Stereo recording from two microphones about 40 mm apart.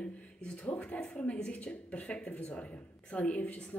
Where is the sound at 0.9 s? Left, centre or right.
Left.